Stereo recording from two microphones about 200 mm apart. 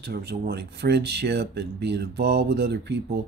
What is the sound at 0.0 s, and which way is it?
Speech, 55° right (ahead or behind).